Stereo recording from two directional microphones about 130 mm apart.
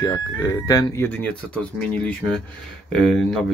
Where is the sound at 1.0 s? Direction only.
15° left (ahead or behind).